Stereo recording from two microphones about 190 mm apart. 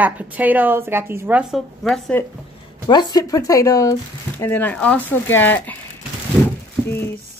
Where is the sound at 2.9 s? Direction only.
20° left (ahead or behind).